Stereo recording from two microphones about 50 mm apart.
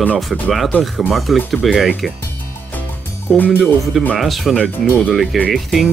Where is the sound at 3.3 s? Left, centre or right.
Centre.